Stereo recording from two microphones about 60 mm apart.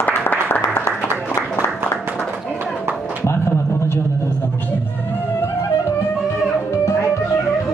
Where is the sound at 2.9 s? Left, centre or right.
Right.